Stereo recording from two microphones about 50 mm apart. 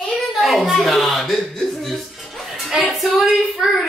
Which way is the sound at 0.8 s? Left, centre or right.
Centre.